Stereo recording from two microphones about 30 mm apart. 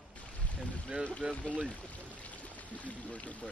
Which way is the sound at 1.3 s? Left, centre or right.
Left.